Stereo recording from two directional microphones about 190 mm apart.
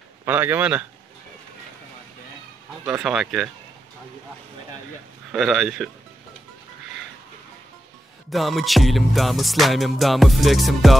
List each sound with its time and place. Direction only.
0.2 s a man's voice: 10° right (ahead or behind)
2.8 s music: 5° right (ahead or behind)
5.3 s music: centre (ahead or behind)
8.3 s music: centre (ahead or behind)